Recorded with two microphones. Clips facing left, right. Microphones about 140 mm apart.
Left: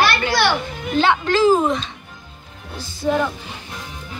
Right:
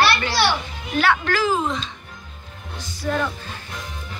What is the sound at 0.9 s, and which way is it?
Speech, 20° left (ahead or behind).